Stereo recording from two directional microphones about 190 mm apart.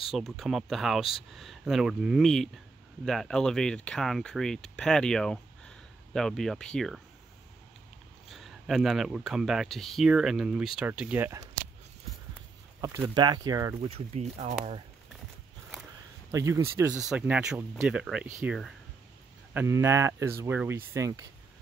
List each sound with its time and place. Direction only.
0.1 s speech: centre (ahead or behind)
8.3 s speech: centre (ahead or behind)
12.8 s speech: 20° right (ahead or behind)
13.8 s speech: 35° right (ahead or behind)
16.3 s speech: 15° right (ahead or behind)